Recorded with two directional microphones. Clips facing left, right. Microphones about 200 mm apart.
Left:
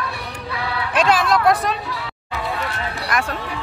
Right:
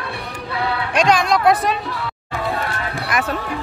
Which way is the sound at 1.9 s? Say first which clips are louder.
Right 3 dB; 50° right (ahead or behind).